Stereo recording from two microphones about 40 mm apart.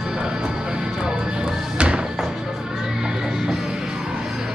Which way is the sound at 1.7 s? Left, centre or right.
Right.